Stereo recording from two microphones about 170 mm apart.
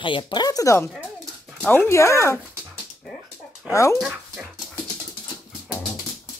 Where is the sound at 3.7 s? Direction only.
15° left (ahead or behind).